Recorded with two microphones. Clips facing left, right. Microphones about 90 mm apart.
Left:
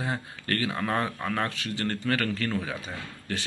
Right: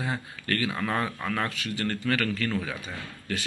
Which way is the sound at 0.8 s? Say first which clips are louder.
Left 1 dB; 20° left (ahead or behind).